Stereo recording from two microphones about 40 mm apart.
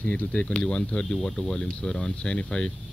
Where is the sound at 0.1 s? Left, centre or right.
Left.